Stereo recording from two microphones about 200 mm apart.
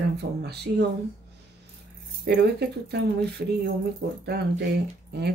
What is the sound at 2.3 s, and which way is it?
Speech, 55° right (ahead or behind).